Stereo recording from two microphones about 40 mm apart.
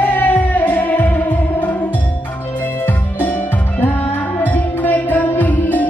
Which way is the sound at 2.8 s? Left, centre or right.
Left.